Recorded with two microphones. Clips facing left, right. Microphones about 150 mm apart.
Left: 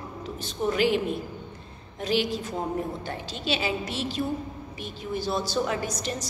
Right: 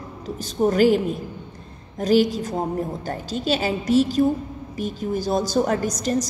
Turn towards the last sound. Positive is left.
turn(degrees=-40)  # may be behind; listen again after turning